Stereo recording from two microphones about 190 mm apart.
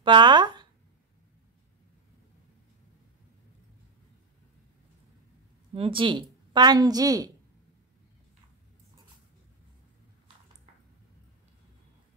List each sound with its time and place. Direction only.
0.0 s speech: 25° right (ahead or behind)
5.8 s a woman's voice: 30° right (ahead or behind)